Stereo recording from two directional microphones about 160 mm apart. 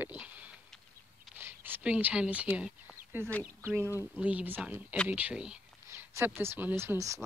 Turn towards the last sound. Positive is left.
turn(degrees=-20)  # may be behind; listen again after turning